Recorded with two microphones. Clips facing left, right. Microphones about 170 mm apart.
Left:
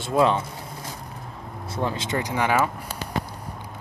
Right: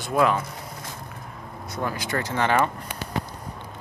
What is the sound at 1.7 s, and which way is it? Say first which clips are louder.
Speech: left 2 dB; 25° left (ahead or behind).